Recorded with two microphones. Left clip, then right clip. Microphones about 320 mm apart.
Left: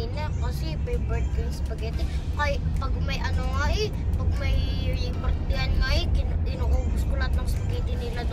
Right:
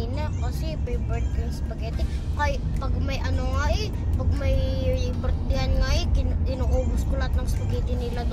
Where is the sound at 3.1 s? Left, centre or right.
Centre.